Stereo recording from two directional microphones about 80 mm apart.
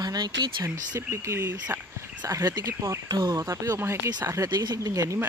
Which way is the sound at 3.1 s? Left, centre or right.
Right.